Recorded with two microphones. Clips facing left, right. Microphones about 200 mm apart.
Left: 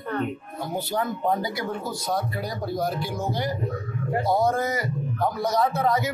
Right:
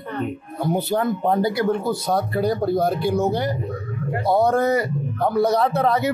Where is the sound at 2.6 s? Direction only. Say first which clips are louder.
Right 7 dB; 60° right (ahead or behind).